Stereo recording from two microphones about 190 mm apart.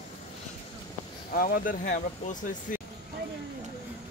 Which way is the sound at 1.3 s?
50° left (ahead or behind).